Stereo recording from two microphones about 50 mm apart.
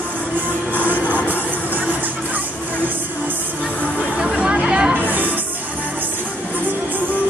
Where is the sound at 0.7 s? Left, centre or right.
Left.